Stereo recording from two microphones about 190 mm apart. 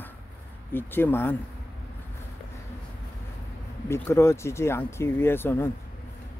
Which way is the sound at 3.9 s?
15° left (ahead or behind).